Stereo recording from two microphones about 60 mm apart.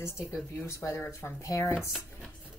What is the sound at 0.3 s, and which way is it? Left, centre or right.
Speech, left.